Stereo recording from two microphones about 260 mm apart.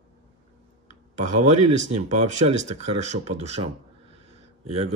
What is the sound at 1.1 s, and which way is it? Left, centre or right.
Speech, right.